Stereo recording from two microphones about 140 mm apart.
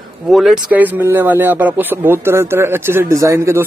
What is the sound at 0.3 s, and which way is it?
Speech, centre (ahead or behind).